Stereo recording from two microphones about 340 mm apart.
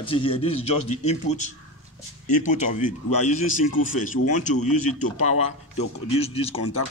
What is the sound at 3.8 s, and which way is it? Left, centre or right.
Speech, left.